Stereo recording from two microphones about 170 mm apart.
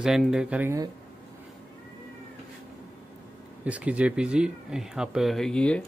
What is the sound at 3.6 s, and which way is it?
Speech, 10° right (ahead or behind).